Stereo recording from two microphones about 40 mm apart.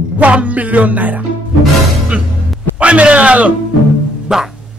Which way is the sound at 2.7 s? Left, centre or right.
Right.